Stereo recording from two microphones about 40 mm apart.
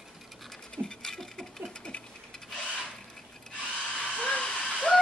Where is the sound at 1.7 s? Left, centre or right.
Left.